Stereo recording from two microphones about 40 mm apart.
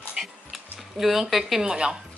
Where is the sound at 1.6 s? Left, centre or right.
Centre.